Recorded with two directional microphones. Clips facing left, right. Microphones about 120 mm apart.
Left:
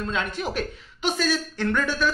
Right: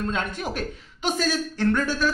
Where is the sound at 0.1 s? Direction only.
45° right (ahead or behind).